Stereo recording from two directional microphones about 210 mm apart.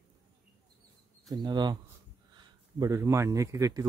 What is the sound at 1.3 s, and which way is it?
A man's voice, 20° right (ahead or behind).